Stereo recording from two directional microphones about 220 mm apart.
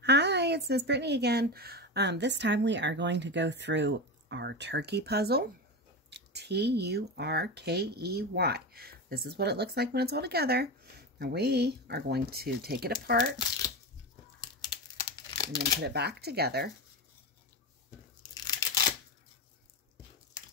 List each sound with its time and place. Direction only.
0.0 s speech: 50° right (ahead or behind)
15.1 s crumpling: 20° left (ahead or behind)
15.8 s speech: 45° right (ahead or behind)
18.4 s tearing: 15° left (ahead or behind)